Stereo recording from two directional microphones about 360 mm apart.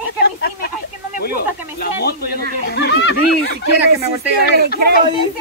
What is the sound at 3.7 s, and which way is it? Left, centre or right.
Speech, right.